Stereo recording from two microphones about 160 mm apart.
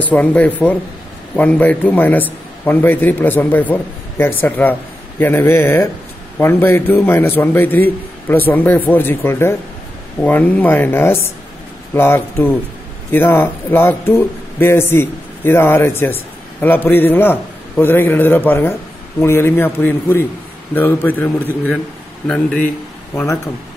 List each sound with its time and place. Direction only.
0.0 s a man's voice: 10° left (ahead or behind)
23.1 s speech: 20° left (ahead or behind)